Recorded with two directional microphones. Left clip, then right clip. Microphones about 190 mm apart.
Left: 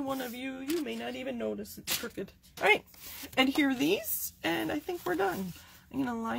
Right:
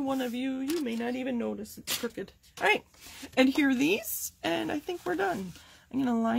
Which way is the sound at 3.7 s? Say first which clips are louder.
Right 2 dB; 40° right (ahead or behind).